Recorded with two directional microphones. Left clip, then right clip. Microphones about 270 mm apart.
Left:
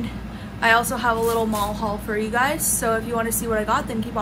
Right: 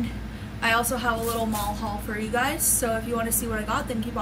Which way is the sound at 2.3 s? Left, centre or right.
Centre.